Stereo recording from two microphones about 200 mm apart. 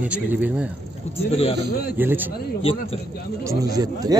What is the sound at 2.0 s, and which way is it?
Speech, 10° right (ahead or behind).